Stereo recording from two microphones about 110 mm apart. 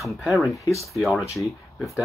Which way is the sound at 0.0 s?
Centre (ahead or behind).